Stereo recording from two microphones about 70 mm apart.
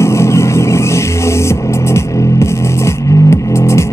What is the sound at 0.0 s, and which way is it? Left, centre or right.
Music, left.